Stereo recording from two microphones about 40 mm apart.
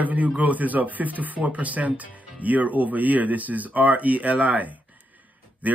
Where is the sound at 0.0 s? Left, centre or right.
Right.